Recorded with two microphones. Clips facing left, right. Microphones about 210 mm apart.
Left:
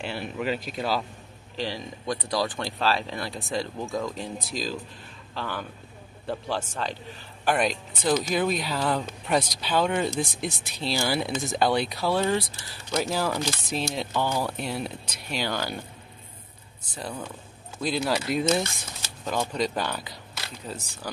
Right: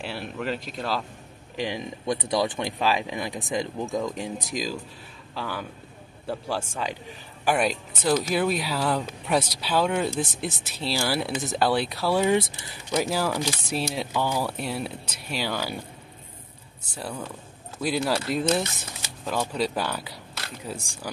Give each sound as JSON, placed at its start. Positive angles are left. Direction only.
{"t": 0.0, "sound": "speech", "side_deg": 0}
{"t": 1.6, "sound": "speech", "side_deg": -20}
{"t": 17.7, "sound": "speech", "side_deg": -10}